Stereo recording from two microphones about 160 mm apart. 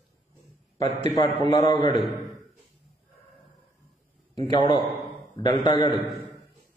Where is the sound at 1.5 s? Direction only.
30° left (ahead or behind).